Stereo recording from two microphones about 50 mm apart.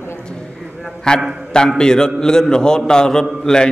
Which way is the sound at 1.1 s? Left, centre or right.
Centre.